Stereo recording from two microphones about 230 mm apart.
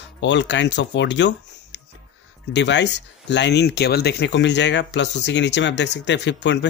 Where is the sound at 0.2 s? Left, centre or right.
Left.